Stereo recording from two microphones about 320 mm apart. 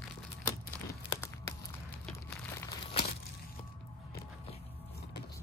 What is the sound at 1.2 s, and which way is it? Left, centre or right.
Crumpling, centre.